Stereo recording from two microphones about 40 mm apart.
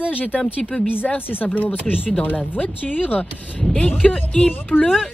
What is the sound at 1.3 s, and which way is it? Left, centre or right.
A woman's voice, left.